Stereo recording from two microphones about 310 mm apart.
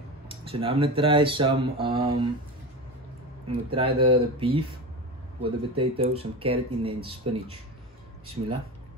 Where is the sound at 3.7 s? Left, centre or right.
Centre.